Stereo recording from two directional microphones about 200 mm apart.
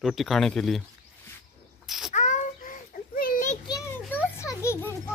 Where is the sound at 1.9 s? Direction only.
Centre (ahead or behind).